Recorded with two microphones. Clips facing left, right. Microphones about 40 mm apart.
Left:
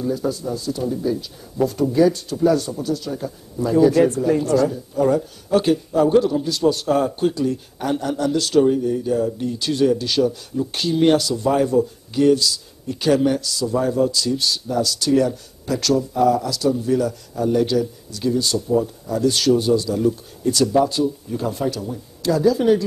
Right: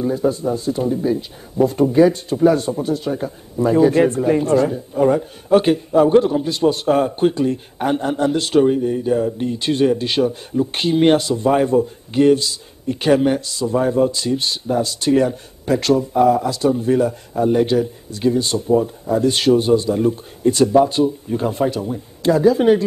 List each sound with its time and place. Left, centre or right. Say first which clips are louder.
0.0 s speech: right 4 dB; right